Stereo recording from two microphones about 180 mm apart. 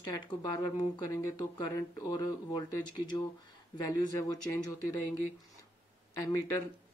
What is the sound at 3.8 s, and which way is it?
Speech, 20° left (ahead or behind).